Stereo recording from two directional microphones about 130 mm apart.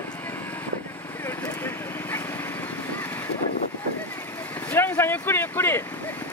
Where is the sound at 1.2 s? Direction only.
20° left (ahead or behind).